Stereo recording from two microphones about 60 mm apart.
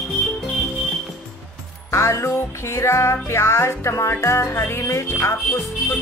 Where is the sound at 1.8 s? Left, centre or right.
Left.